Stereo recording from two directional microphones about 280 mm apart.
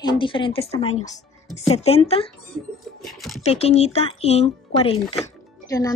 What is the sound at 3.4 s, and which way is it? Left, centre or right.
A woman's voice, left.